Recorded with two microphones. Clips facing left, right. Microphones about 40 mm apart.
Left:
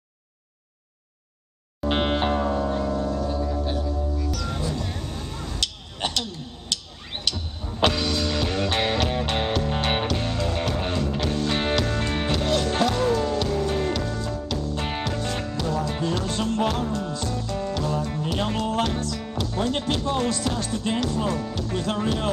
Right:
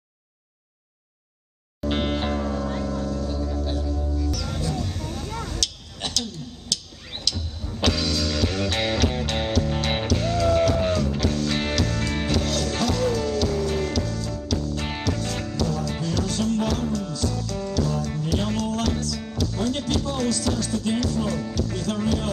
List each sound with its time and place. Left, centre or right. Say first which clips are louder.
1.8 s music: left 2 dB; left
5.4 s a sound: even; centre
6.7 s music: left 1 dB; left